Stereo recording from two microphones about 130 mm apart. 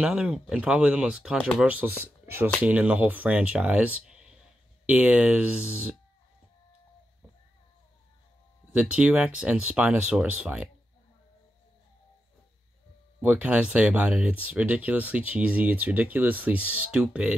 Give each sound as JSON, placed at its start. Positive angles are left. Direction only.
{"t": 0.0, "sound": "speech", "side_deg": -5}
{"t": 8.7, "sound": "speech", "side_deg": -10}
{"t": 13.2, "sound": "speech", "side_deg": -10}